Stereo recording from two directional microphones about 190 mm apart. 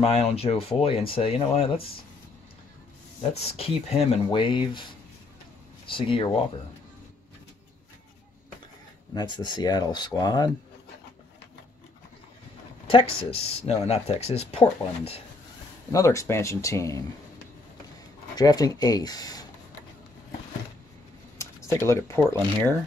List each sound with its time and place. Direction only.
0.0 s speech: 30° left (ahead or behind)
3.2 s speech: 30° left (ahead or behind)
5.9 s speech: 30° left (ahead or behind)
9.1 s speech: 20° left (ahead or behind)
12.8 s speech: 30° left (ahead or behind)
15.9 s speech: 15° left (ahead or behind)
18.3 s speech: 20° left (ahead or behind)
21.4 s speech: 15° left (ahead or behind)